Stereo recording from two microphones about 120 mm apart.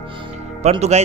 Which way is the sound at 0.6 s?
65° right (ahead or behind).